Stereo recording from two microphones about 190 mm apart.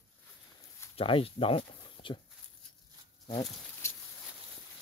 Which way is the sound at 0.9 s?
30° left (ahead or behind).